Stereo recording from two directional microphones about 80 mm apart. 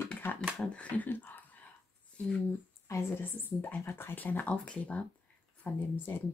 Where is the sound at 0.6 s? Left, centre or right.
Centre.